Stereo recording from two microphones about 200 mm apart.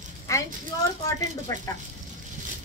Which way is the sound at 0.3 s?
15° left (ahead or behind).